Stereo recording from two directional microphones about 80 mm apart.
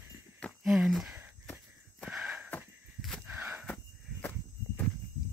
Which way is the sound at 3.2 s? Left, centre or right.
Right.